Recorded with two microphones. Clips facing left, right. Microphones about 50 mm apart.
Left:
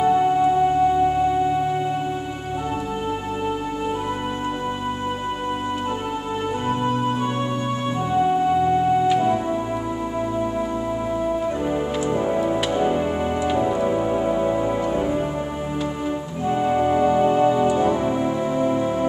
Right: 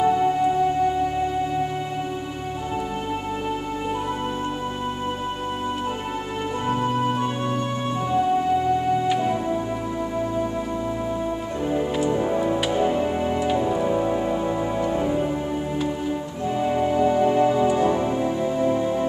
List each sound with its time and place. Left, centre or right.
0.0 s music: centre
9.2 s music: centre
12.1 s music: centre
16.6 s music: centre
18.1 s music: left